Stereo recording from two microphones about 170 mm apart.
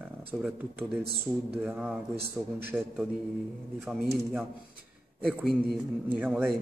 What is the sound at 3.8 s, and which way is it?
A man's voice, centre (ahead or behind).